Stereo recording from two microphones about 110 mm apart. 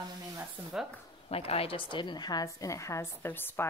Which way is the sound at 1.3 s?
60° left (ahead or behind).